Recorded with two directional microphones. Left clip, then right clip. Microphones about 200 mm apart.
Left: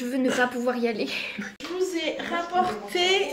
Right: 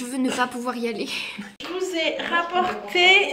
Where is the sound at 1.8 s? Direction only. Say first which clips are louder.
Right 3 dB; 20° left (ahead or behind).